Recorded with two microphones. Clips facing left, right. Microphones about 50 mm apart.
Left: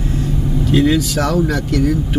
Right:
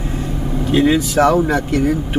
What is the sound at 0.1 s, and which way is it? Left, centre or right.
Speech, centre.